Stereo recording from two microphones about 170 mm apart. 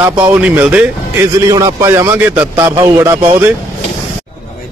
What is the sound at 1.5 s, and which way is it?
Speech, 20° right (ahead or behind).